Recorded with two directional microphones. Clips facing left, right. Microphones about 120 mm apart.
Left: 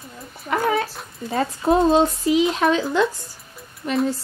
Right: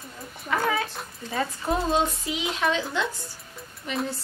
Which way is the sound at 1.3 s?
30° left (ahead or behind).